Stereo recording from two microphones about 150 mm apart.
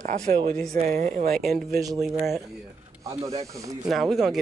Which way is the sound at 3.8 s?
Centre (ahead or behind).